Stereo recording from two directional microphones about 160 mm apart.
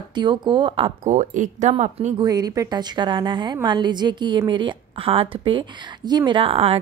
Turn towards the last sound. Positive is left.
turn(degrees=-35)  # may be behind; listen again after turning